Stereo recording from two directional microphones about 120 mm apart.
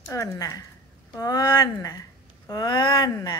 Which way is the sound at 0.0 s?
25° left (ahead or behind).